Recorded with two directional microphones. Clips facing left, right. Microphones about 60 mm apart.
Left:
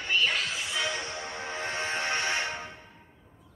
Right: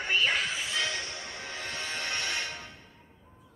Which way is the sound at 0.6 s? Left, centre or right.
Centre.